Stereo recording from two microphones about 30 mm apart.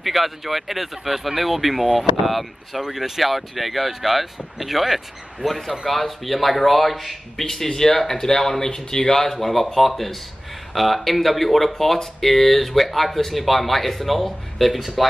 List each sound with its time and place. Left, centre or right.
0.0 s speech: centre
7.4 s speech: centre